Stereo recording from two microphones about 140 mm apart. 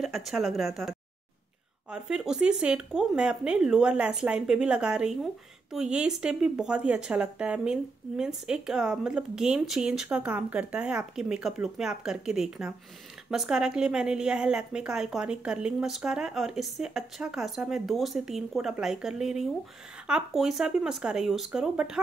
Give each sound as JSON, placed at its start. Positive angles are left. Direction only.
{"t": 0.0, "sound": "speech", "side_deg": 0}